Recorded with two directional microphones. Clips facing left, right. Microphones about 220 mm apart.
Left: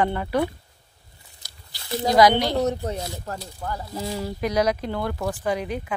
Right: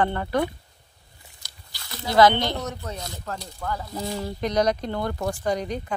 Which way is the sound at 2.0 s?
15° left (ahead or behind).